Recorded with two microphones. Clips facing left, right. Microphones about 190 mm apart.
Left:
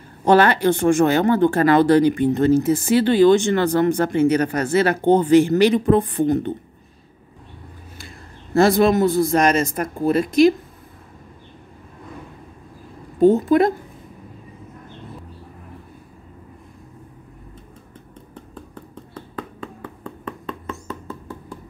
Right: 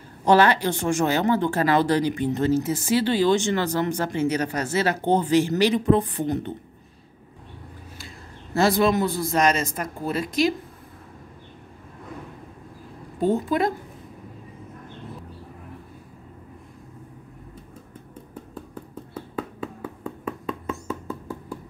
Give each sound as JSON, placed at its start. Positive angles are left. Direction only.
{"t": 0.2, "sound": "speech", "side_deg": 55}
{"t": 8.5, "sound": "speech", "side_deg": 50}
{"t": 13.2, "sound": "speech", "side_deg": 50}
{"t": 19.1, "sound": "a sound", "side_deg": -5}